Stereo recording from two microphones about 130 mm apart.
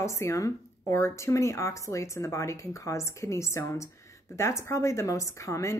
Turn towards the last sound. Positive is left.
turn(degrees=25)  # may be behind; listen again after turning